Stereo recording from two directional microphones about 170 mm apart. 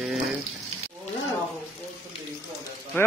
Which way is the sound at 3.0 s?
15° left (ahead or behind).